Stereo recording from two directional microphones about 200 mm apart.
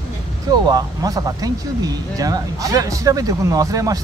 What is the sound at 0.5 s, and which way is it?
Speech, 20° right (ahead or behind).